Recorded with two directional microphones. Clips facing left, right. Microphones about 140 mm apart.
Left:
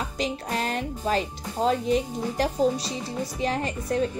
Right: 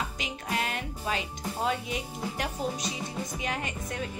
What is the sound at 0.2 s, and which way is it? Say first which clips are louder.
A woman's voice: left 7 dB; 35° left (ahead or behind).